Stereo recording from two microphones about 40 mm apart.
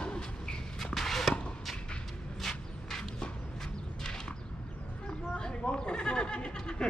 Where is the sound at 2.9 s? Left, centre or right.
Centre.